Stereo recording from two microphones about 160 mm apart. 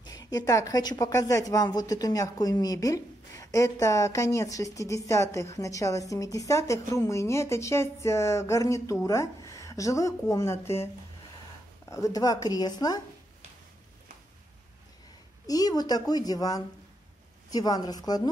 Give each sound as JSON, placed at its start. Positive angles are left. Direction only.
{"t": 0.0, "sound": "a woman's voice", "side_deg": 25}
{"t": 11.9, "sound": "a woman's voice", "side_deg": 20}
{"t": 15.4, "sound": "a woman's voice", "side_deg": 25}